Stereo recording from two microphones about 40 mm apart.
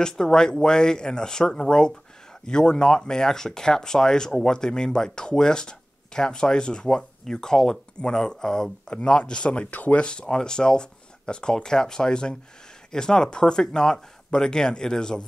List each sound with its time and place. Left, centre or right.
0.0 s speech: centre; by 10.0 s left
10.0 s speech: left